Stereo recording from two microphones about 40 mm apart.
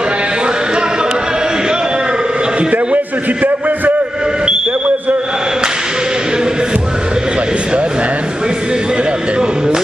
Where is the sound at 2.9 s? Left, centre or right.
Right.